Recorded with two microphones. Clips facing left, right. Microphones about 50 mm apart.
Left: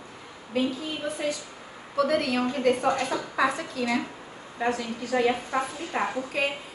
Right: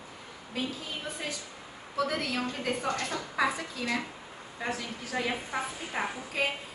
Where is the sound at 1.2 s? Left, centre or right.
Centre.